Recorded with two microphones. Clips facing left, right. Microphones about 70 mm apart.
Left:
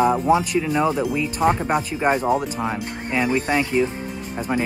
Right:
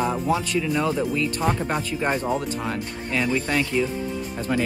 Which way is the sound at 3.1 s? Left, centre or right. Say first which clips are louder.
Left 3 dB; left.